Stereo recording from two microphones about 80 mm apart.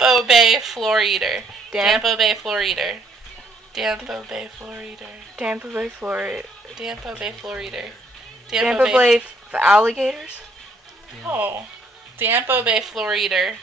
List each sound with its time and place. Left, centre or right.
0.0 s speech: centre
4.6 s speech: centre
11.2 s speech: right
12.7 s speech: centre